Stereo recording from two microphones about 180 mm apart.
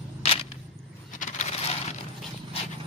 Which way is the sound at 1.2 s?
40° left (ahead or behind).